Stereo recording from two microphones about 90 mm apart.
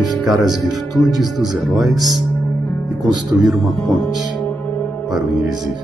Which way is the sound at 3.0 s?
50° right (ahead or behind).